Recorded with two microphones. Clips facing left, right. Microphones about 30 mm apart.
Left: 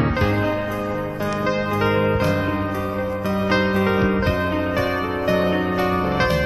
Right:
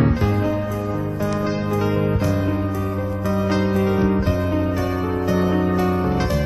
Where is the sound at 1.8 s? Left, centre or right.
Left.